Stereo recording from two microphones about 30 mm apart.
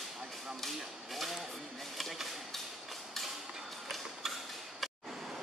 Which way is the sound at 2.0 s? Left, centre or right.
Centre.